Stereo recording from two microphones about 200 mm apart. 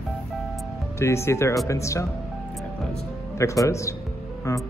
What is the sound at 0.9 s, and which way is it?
Speech, 15° left (ahead or behind).